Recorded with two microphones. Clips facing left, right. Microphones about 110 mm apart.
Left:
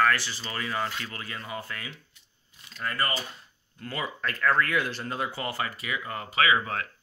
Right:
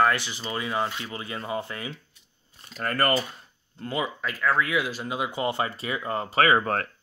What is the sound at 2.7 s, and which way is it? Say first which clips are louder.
Speech: right 5 dB; 50° right (ahead or behind).